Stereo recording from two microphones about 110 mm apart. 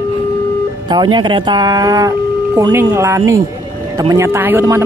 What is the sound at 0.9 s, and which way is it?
Speech, 45° right (ahead or behind).